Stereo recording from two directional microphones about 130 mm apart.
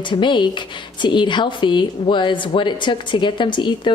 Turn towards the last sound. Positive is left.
turn(degrees=35)  # may be behind; listen again after turning